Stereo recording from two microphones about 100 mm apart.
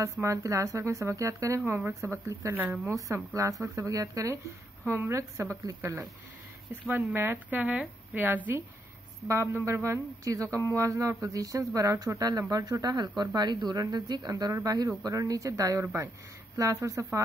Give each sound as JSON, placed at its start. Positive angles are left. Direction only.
{"t": 0.0, "sound": "a woman's voice", "side_deg": -30}
{"t": 2.9, "sound": "a woman's voice", "side_deg": -30}
{"t": 7.2, "sound": "speech", "side_deg": -20}